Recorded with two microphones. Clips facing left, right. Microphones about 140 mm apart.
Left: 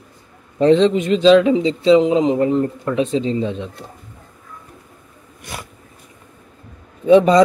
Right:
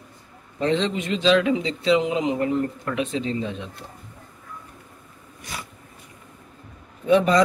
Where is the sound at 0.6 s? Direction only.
35° left (ahead or behind).